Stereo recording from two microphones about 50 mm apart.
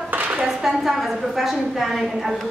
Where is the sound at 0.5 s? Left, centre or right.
Centre.